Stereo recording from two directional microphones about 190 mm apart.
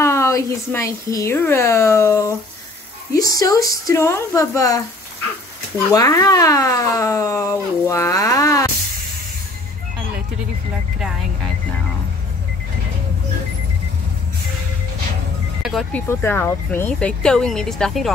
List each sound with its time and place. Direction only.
0.0 s speech: 15° left (ahead or behind)
5.9 s speech: 20° left (ahead or behind)
15.6 s speech: centre (ahead or behind)
16.1 s speech: 10° left (ahead or behind)